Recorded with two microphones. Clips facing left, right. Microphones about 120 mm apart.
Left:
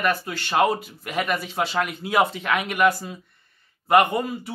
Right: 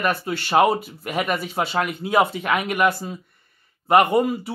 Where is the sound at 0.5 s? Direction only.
5° right (ahead or behind).